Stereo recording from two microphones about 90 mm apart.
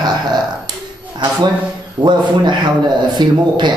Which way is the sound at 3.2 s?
55° right (ahead or behind).